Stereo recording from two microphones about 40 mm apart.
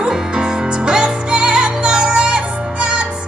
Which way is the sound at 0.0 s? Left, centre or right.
Right.